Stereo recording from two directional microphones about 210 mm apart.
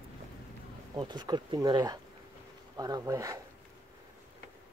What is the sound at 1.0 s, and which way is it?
Speech, 20° right (ahead or behind).